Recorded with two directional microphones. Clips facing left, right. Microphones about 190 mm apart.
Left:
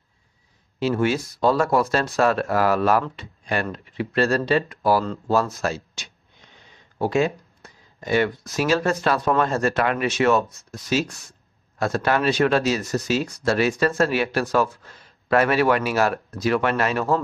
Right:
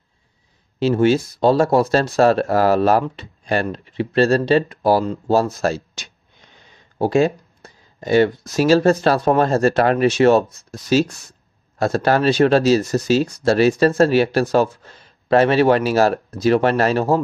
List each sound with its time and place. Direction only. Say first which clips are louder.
0.7 s speech: right 6 dB; 30° right (ahead or behind)